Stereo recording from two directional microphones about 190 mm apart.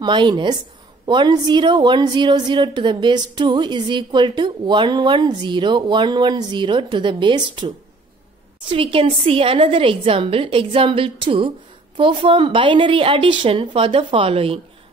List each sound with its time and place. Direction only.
0.0 s a woman's voice: 25° right (ahead or behind)